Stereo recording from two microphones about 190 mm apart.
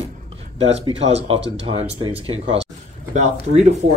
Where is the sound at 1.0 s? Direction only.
35° right (ahead or behind).